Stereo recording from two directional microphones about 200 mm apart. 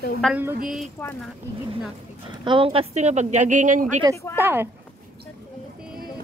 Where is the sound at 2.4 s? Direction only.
25° right (ahead or behind).